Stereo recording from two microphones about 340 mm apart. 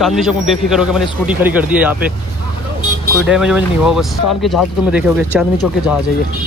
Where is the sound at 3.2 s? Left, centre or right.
Centre.